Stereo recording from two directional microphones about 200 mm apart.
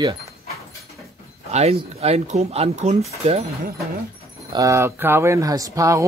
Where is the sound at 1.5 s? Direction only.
30° right (ahead or behind).